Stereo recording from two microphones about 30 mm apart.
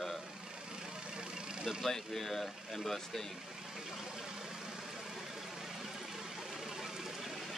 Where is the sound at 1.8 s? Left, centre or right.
Centre.